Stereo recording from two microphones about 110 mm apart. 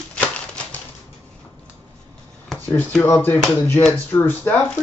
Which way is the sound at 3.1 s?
15° left (ahead or behind).